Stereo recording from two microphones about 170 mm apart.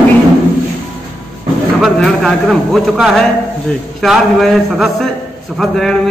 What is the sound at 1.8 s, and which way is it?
A man's voice, centre (ahead or behind).